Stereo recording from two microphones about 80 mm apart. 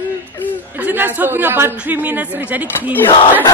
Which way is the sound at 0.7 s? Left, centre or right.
Right.